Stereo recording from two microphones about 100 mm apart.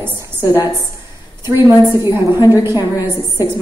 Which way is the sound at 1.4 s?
25° right (ahead or behind).